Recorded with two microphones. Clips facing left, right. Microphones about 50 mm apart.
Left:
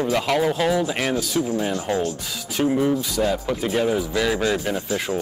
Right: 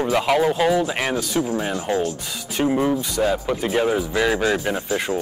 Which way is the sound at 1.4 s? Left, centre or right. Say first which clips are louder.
Even; centre.